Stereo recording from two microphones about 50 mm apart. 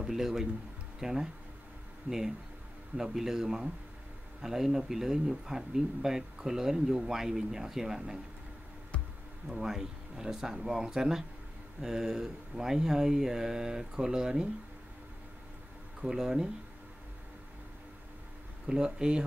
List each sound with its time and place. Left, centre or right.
0.0 s speech: centre
9.5 s speech: centre
16.0 s speech: centre
18.7 s speech: centre